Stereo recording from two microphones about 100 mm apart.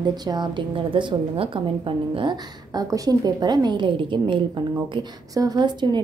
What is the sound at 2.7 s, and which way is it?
A woman's voice, 40° right (ahead or behind).